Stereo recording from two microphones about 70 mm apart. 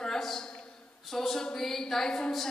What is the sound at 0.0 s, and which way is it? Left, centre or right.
A man's voice, centre.